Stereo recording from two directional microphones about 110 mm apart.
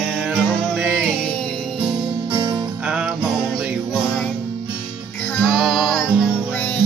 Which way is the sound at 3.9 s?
Centre (ahead or behind).